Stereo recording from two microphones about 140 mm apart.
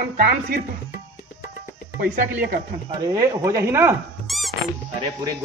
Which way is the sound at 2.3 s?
90° right.